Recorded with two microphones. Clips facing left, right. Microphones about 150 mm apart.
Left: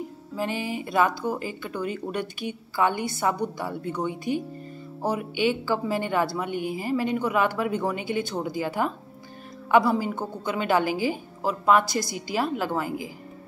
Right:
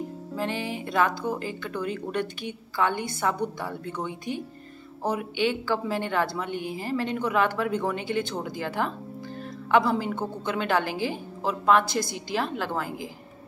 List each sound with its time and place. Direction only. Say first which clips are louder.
0.4 s speech: left 2 dB; 10° left (ahead or behind)
6.5 s speech: left 3 dB; 45° left (ahead or behind)
6.8 s speech: left 2 dB; 10° left (ahead or behind)